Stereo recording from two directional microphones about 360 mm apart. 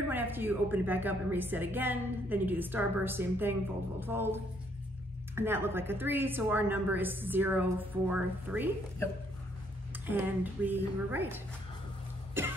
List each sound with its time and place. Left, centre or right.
0.1 s a woman's voice: centre
10.0 s a woman's voice: centre
12.4 s cough: centre